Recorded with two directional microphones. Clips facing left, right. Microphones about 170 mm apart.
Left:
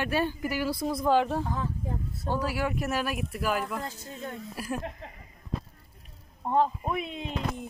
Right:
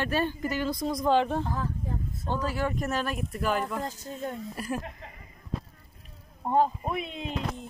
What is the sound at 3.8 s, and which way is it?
Speech, 40° right (ahead or behind).